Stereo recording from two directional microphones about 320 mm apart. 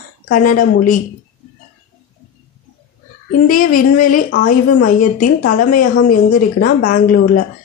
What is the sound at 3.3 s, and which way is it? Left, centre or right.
A woman's voice, left.